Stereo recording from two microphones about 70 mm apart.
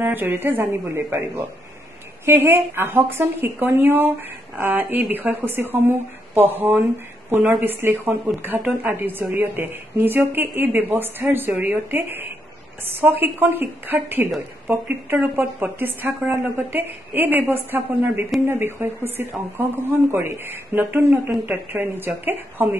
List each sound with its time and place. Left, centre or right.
0.0 s a woman's voice: right